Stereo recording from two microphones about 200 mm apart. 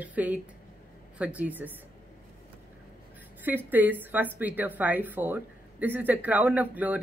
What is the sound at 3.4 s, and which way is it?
A woman's voice, 10° right (ahead or behind).